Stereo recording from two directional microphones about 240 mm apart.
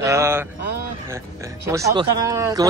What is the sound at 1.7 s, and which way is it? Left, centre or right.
Speech, centre.